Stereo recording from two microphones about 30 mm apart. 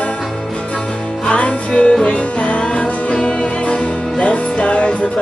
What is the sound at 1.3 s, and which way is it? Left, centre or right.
Music, left.